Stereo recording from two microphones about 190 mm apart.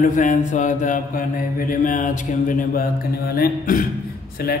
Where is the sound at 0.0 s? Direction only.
40° left (ahead or behind).